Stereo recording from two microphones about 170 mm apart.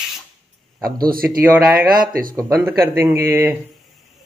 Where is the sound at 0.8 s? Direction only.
60° right (ahead or behind).